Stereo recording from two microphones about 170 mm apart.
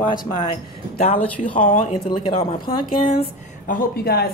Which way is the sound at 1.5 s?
50° left (ahead or behind).